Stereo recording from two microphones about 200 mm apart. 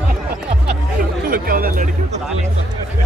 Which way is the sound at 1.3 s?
50° right (ahead or behind).